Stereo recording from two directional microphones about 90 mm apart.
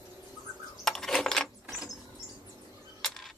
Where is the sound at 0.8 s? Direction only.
5° left (ahead or behind).